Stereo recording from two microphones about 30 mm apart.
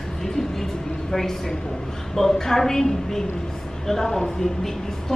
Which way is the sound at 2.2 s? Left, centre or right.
Centre.